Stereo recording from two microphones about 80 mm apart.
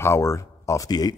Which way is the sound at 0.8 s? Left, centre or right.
Left.